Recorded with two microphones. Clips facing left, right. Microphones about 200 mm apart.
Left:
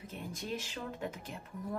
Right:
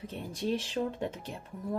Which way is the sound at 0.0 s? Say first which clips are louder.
Right 8 dB; 30° right (ahead or behind).